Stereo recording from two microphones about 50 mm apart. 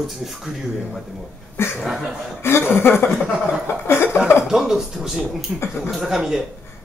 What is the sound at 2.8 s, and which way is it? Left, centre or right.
Speech, left.